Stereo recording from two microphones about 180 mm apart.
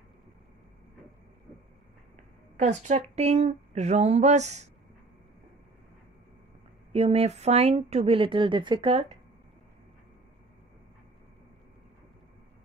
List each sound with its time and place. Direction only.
2.5 s speech: 40° right (ahead or behind)
6.9 s speech: 35° right (ahead or behind)